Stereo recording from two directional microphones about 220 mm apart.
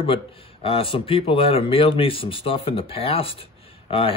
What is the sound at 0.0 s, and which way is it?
Speech, 25° left (ahead or behind).